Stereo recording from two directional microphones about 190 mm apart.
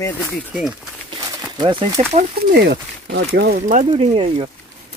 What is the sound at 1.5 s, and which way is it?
Speech, 25° right (ahead or behind).